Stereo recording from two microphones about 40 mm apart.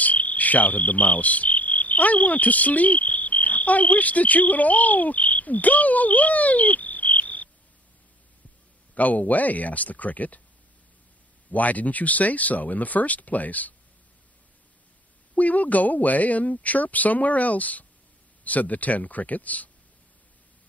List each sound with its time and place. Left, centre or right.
0.0 s insect: left
8.9 s speech: left
11.5 s speech: left
15.3 s speech: left